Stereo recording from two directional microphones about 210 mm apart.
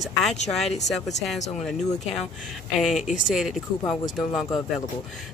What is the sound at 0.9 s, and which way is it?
Speech, centre (ahead or behind).